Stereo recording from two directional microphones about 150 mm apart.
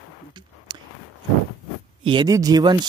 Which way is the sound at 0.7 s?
30° right (ahead or behind).